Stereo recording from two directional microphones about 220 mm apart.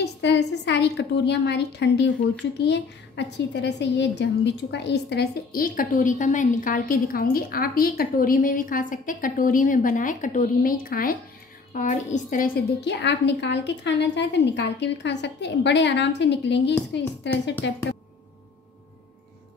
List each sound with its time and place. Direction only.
0.0 s a woman's voice: 50° left (ahead or behind)